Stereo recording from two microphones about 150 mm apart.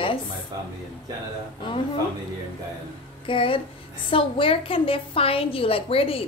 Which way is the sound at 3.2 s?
35° left (ahead or behind).